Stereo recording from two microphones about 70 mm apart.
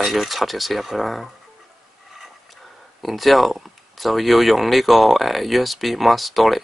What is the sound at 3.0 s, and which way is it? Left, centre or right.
Speech, centre.